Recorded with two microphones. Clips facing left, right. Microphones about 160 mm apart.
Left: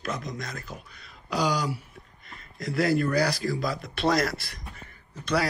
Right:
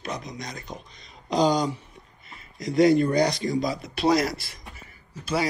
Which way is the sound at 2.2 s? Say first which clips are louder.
Right 2 dB; centre (ahead or behind).